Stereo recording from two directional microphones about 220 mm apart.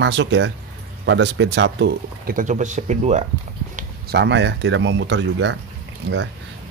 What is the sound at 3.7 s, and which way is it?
Speech, 50° right (ahead or behind).